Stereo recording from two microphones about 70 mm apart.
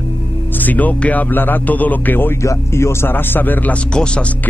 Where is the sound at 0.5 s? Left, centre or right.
Left.